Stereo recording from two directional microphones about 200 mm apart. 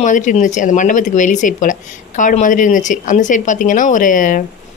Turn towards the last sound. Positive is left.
turn(degrees=40)  # may be behind; listen again after turning